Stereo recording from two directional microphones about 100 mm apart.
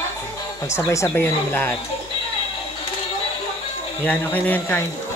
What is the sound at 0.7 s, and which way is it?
Speech, 30° left (ahead or behind).